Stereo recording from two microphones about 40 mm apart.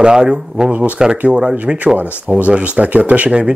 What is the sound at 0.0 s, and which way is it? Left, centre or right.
Speech, centre.